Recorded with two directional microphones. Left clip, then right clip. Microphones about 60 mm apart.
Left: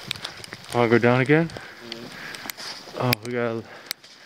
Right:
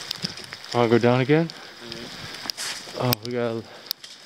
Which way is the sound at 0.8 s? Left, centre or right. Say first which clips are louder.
Even; centre.